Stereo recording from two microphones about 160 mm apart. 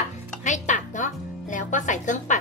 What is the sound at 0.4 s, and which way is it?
Music, 50° left (ahead or behind).